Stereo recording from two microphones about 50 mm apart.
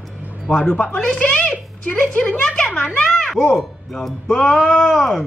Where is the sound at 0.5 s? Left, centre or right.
Centre.